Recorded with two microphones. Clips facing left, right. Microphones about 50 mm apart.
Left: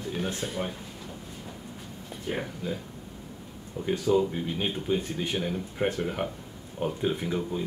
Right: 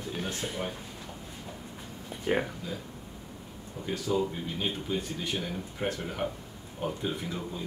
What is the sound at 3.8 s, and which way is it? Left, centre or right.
Speech, left.